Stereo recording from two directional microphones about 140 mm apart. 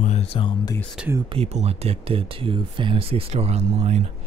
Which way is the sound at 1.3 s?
50° right (ahead or behind).